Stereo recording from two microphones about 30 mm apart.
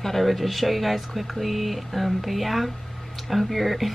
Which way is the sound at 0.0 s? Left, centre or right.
Centre.